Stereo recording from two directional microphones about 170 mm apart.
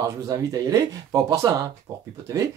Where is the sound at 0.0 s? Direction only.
20° right (ahead or behind).